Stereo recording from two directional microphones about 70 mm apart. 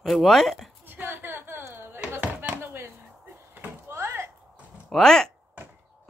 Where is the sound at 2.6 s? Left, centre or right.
Right.